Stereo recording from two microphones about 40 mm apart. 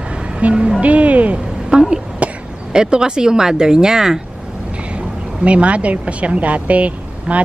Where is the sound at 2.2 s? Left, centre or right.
Right.